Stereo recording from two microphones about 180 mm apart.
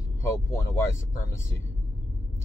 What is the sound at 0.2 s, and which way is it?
Speech, 15° left (ahead or behind).